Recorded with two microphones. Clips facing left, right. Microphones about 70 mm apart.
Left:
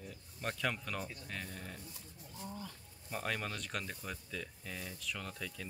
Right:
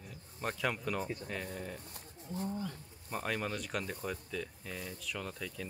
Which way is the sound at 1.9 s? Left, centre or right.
Right.